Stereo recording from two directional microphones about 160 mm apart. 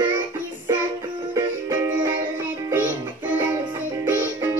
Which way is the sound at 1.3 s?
15° right (ahead or behind).